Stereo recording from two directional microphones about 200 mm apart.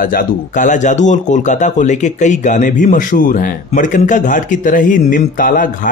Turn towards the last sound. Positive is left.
turn(degrees=40)  # may be behind; listen again after turning